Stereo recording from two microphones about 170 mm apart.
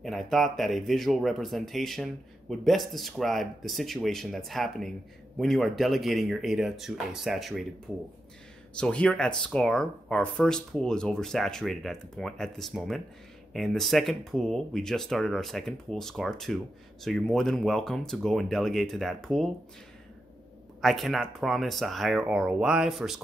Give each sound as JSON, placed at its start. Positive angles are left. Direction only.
{"t": 0.0, "sound": "speech", "side_deg": 0}
{"t": 8.7, "sound": "speech", "side_deg": 5}
{"t": 20.8, "sound": "speech", "side_deg": 0}